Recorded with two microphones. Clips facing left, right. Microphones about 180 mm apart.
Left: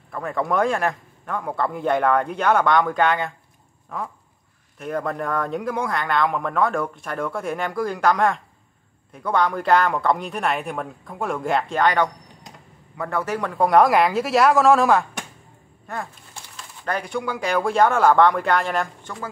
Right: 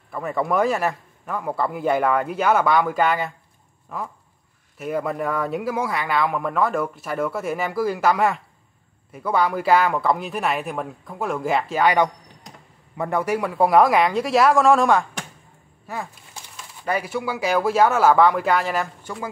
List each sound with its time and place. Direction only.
0.1 s speech: 5° right (ahead or behind)